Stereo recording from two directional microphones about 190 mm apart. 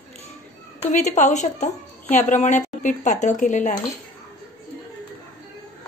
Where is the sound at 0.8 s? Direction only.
35° left (ahead or behind).